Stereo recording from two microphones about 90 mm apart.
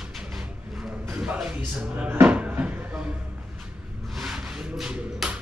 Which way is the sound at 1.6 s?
15° right (ahead or behind).